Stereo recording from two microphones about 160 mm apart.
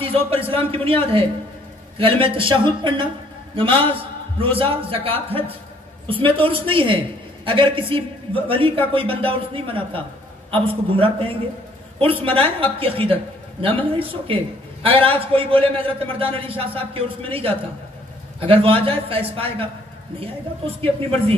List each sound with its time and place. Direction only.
0.0 s a man's voice: 35° right (ahead or behind)
2.0 s a man's voice: 35° right (ahead or behind)
20.8 s a man's voice: 35° right (ahead or behind)